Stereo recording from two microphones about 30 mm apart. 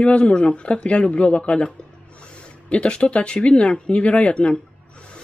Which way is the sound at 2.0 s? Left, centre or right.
Left.